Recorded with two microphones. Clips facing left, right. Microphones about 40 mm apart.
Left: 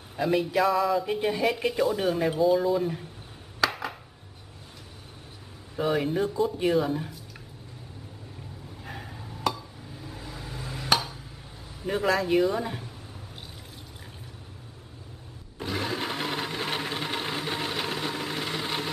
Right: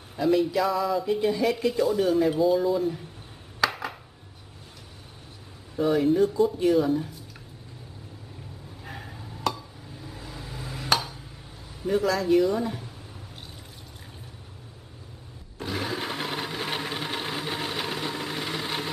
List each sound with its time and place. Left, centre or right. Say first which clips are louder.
0.2 s speech: right 3 dB; centre
0.7 s speech: left 1 dB; centre
1.0 s speech: right 2 dB; left
2.3 s speech: even; centre
3.6 s a sound: right 1 dB; centre
5.8 s speech: right 4 dB; centre
8.8 s chink: even; centre
11.8 s a man's voice: right 1 dB; centre
15.6 s sewing machine: even; centre